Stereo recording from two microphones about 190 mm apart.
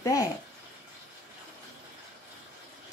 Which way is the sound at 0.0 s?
15° left (ahead or behind).